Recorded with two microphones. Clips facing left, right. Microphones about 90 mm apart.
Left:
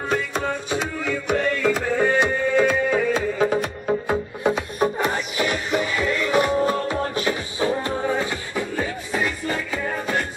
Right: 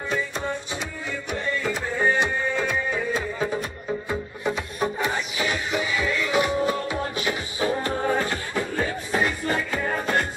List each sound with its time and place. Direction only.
0.1 s music: 65° left (ahead or behind)
2.9 s music: 80° left; by 8.0 s 25° left (ahead or behind)
8.2 s music: 5° left (ahead or behind)
9.2 s music: 15° right (ahead or behind)